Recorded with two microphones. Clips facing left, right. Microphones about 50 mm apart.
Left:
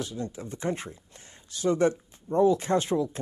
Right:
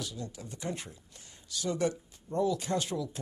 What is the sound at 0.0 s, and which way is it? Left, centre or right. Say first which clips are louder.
Speech: left 7 dB; left.